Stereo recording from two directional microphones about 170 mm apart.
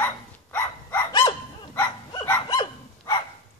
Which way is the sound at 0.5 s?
15° left (ahead or behind).